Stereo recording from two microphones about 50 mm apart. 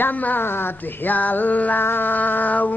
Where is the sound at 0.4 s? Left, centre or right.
Left.